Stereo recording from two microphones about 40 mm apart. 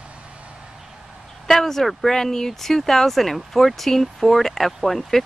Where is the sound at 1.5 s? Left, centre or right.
Centre.